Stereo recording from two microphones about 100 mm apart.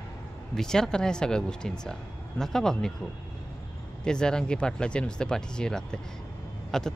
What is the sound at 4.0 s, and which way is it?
Speech, 10° left (ahead or behind).